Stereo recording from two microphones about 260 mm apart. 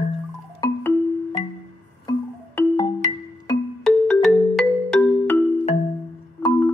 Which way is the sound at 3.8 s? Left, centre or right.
Centre.